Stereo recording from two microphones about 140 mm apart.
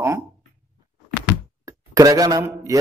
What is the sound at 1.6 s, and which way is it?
Speech, 25° right (ahead or behind).